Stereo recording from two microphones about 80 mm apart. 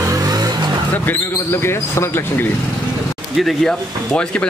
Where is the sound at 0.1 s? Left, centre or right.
Right.